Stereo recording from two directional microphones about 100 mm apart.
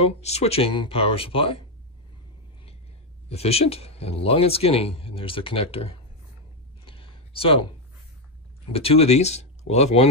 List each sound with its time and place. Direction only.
0.0 s speech: 90° left
0.7 s speech: 70° left (ahead or behind)
3.3 s speech: 90° left
6.8 s a sound: 60° left (ahead or behind)
8.7 s speech: 85° left